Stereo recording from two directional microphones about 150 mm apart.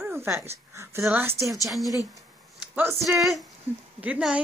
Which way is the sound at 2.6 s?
15° right (ahead or behind).